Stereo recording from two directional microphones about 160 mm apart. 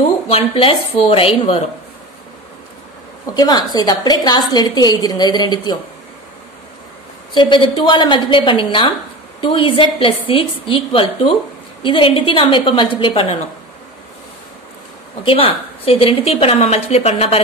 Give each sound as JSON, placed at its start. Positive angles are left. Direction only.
{"t": 0.3, "sound": "a woman's voice", "side_deg": 35}
{"t": 3.3, "sound": "a woman's voice", "side_deg": 25}
{"t": 7.3, "sound": "a woman's voice", "side_deg": 30}
{"t": 15.2, "sound": "a woman's voice", "side_deg": 35}